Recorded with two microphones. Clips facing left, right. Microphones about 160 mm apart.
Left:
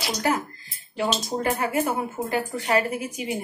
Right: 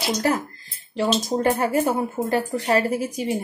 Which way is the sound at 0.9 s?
35° right (ahead or behind).